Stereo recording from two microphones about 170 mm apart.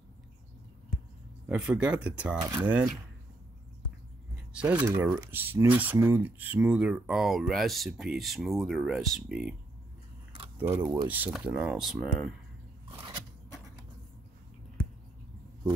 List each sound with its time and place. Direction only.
1.5 s speech: 5° right (ahead or behind)
4.5 s a sound: 5° right (ahead or behind)
4.7 s speech: 15° right (ahead or behind)
10.3 s keys jangling: 35° right (ahead or behind)
11.1 s speech: 10° right (ahead or behind)
12.9 s biting: 25° right (ahead or behind)